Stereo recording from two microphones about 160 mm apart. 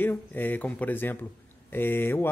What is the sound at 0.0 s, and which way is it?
Speech, 10° left (ahead or behind).